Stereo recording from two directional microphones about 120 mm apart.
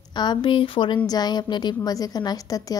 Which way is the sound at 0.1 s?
40° left (ahead or behind).